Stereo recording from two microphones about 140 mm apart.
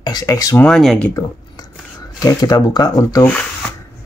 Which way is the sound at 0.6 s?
Centre (ahead or behind).